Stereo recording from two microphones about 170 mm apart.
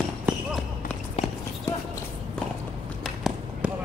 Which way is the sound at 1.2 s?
40° left (ahead or behind).